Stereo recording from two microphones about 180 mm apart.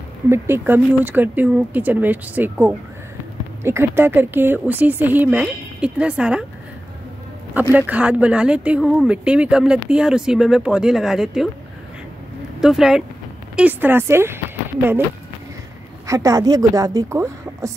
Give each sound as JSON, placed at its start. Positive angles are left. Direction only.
{"t": 0.3, "sound": "speech", "side_deg": -10}
{"t": 7.7, "sound": "speech", "side_deg": -10}
{"t": 12.5, "sound": "speech", "side_deg": -5}
{"t": 16.1, "sound": "speech", "side_deg": -20}